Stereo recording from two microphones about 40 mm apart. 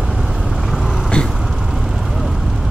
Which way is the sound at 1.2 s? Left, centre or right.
Left.